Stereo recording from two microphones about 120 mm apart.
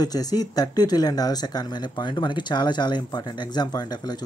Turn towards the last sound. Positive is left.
turn(degrees=35)  # may be behind; listen again after turning